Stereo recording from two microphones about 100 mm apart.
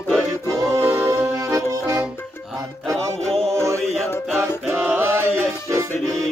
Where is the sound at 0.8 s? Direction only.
15° right (ahead or behind).